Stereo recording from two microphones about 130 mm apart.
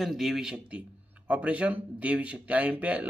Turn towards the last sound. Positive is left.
turn(degrees=-10)  # may be behind; listen again after turning